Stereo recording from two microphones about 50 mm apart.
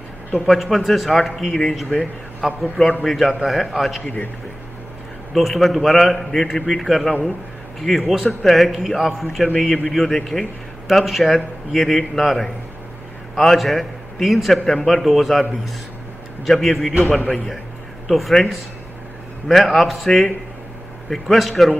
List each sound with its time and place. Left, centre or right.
0.5 s a man's voice: centre
2.4 s a man's voice: centre
4.0 s a man's voice: left
5.3 s a man's voice: centre
16.4 s a man's voice: centre
18.0 s a man's voice: centre